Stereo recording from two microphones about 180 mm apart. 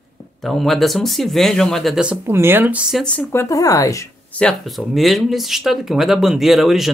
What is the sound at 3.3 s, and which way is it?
Speech, 15° left (ahead or behind).